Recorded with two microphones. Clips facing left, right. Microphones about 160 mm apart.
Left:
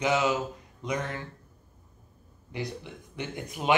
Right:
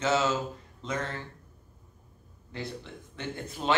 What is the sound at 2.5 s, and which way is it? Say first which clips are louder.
A man's voice: left 2 dB; 15° left (ahead or behind).